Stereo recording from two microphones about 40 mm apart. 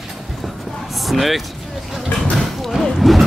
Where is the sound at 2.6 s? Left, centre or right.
Centre.